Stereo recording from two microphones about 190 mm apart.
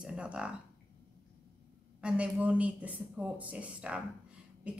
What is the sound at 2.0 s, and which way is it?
Speech, 5° right (ahead or behind).